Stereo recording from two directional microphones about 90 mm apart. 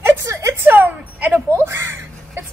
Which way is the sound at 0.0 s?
35° right (ahead or behind).